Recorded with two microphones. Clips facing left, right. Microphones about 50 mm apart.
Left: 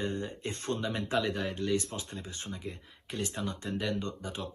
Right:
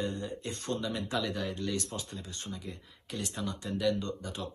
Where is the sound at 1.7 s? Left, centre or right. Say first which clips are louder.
Left 4 dB; left.